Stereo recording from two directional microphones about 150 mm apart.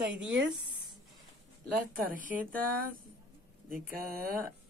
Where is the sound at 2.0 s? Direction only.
65° right (ahead or behind).